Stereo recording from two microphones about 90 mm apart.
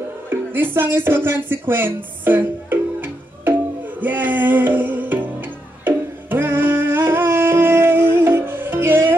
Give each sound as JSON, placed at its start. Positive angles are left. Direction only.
{"t": 0.3, "sound": "speech", "side_deg": -25}
{"t": 4.0, "sound": "music", "side_deg": -20}